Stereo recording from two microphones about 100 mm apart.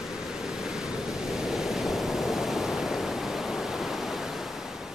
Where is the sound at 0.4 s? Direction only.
5° right (ahead or behind).